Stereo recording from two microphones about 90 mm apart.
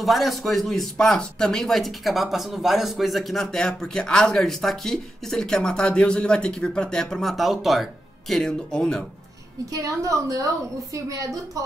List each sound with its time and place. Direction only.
0.0 s speech: centre (ahead or behind)
9.7 s a woman's voice: 40° right (ahead or behind)